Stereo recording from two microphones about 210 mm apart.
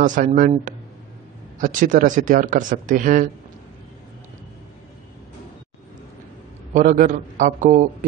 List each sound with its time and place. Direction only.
0.0 s speech: 40° right (ahead or behind)
6.7 s speech: 40° right (ahead or behind)